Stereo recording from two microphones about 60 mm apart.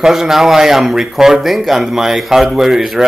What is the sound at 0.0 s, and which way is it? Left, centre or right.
A man's voice, centre.